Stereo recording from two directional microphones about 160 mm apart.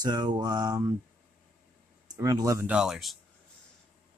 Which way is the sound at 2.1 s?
20° right (ahead or behind).